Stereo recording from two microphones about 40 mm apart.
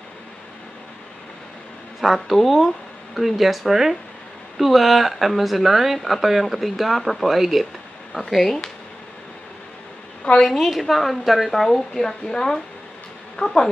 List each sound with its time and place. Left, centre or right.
2.0 s a woman's voice: centre
8.3 s speech: centre
10.4 s a woman's voice: centre